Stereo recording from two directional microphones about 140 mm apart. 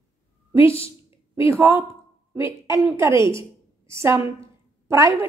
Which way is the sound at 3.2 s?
35° left (ahead or behind).